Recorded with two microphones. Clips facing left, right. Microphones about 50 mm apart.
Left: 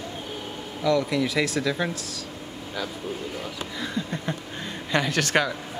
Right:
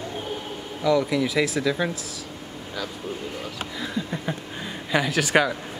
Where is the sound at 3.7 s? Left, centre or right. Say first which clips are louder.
Right 1 dB; centre.